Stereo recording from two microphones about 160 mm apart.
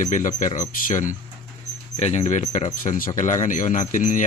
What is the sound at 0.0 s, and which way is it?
Speech, 55° left (ahead or behind).